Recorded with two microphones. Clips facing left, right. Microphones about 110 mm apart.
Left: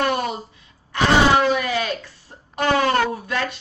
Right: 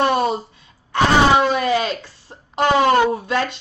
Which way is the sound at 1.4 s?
25° right (ahead or behind).